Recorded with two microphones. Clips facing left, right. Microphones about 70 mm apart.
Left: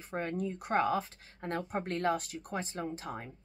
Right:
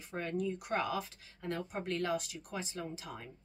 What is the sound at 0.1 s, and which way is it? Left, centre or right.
Speech, left.